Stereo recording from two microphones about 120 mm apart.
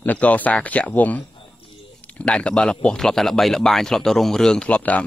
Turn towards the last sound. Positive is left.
turn(degrees=10)  # may be behind; listen again after turning